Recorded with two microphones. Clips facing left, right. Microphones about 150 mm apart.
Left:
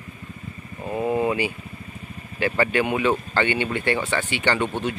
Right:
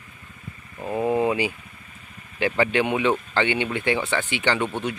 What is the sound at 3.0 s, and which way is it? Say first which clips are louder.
Speech: even; 15° right (ahead or behind).